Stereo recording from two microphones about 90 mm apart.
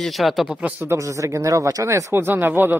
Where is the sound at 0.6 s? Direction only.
25° right (ahead or behind).